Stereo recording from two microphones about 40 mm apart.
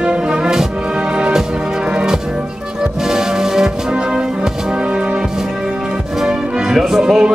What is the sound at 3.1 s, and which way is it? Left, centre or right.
Music, centre.